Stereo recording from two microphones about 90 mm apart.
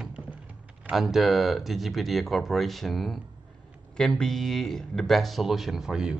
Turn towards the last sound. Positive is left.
turn(degrees=-5)  # may be behind; listen again after turning